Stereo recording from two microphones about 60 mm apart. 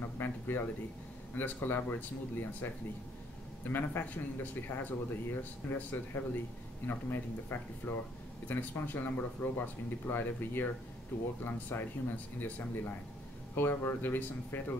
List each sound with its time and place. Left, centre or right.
0.0 s speech: left
11.7 s speech: left